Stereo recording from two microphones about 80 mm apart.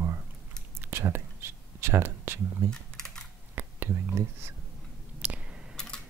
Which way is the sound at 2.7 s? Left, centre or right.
Centre.